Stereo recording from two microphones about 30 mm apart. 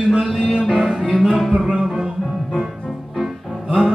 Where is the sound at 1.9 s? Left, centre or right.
Centre.